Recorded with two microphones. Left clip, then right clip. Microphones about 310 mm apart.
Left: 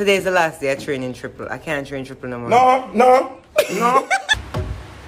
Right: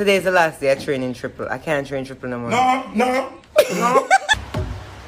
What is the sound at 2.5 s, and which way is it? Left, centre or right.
Music, centre.